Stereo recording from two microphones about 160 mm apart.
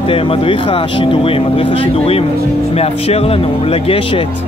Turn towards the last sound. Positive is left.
turn(degrees=35)  # may be behind; listen again after turning